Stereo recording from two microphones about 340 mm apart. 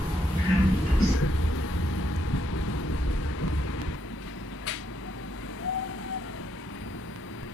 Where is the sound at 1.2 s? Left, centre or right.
Left.